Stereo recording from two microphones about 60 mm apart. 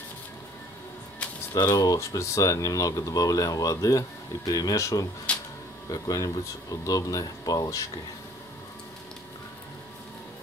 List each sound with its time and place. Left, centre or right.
1.5 s speech: left
4.5 s speech: left
5.9 s speech: left